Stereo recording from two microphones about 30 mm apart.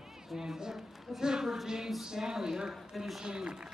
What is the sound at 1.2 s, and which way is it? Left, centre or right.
A man's voice, centre.